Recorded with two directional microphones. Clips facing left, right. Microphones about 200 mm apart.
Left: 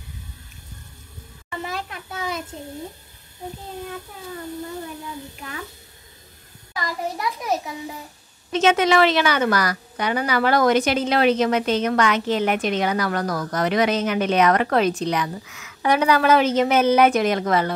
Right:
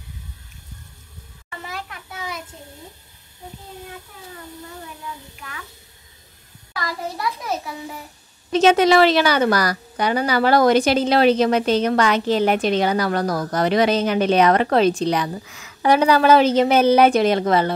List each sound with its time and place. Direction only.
1.6 s a sound: 25° left (ahead or behind)
6.7 s a child's voice: 15° left (ahead or behind)
8.5 s a woman's voice: 35° right (ahead or behind)